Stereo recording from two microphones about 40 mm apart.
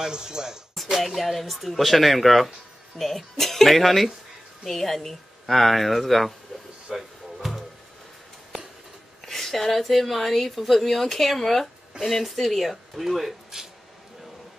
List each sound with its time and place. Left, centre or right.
0.0 s speech: centre
1.0 s speech: centre
6.9 s a sound: centre
9.2 s speech: centre